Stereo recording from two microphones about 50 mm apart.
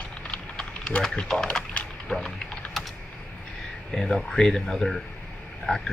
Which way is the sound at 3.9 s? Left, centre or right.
Centre.